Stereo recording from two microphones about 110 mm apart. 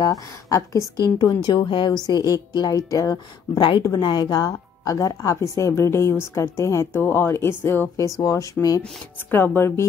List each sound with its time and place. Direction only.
0.0 s speech: 30° left (ahead or behind)
0.9 s a woman's voice: 40° left (ahead or behind)
3.6 s a woman's voice: 45° left (ahead or behind)
9.3 s speech: 20° left (ahead or behind)